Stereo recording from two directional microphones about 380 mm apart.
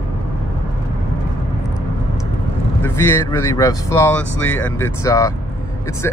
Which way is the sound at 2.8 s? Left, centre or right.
Centre.